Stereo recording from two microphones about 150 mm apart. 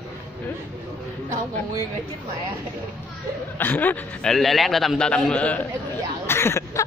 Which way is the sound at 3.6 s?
10° left (ahead or behind).